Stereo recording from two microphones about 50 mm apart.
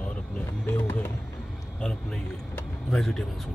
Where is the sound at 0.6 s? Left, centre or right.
Left.